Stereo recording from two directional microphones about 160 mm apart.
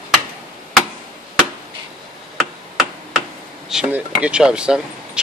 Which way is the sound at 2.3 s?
5° right (ahead or behind).